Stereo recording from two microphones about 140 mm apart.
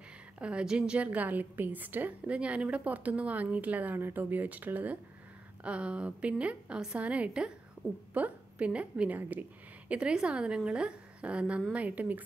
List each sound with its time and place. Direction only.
0.4 s a woman's voice: 10° right (ahead or behind)